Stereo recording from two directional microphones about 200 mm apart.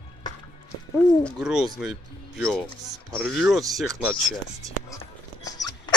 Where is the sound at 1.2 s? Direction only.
5° right (ahead or behind).